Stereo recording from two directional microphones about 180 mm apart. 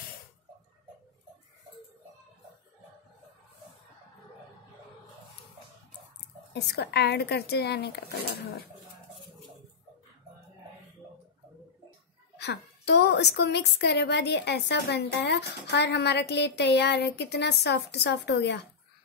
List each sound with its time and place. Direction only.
6.5 s speech: 65° left (ahead or behind)
12.4 s a woman's voice: 70° left (ahead or behind)